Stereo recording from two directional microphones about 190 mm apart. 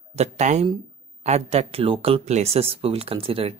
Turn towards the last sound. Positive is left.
turn(degrees=-30)  # may be behind; listen again after turning